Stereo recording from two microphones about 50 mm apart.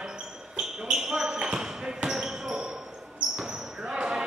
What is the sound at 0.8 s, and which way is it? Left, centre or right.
Basketball bounce, centre.